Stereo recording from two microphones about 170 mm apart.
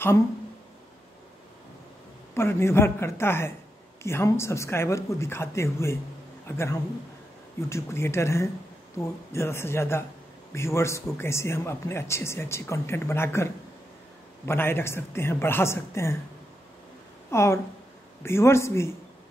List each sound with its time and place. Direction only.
2.3 s a man's voice: 15° left (ahead or behind)
17.3 s speech: 15° left (ahead or behind)